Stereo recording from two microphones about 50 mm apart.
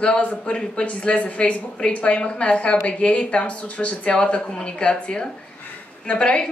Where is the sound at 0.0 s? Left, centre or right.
Left.